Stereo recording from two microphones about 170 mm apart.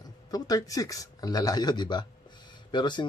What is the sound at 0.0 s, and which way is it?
Speech, 20° left (ahead or behind).